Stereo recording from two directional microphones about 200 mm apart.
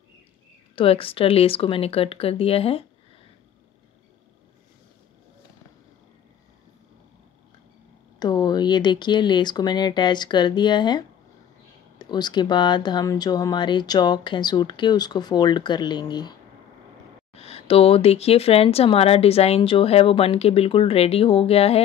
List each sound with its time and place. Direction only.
0.7 s speech: 30° left (ahead or behind)
8.2 s speech: 20° left (ahead or behind)